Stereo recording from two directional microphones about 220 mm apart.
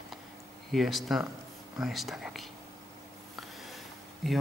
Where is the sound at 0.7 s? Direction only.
Centre (ahead or behind).